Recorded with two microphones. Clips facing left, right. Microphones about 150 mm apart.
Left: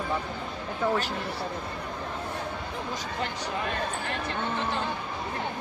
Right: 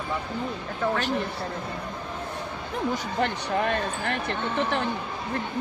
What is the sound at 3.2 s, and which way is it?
Speech, 65° right (ahead or behind).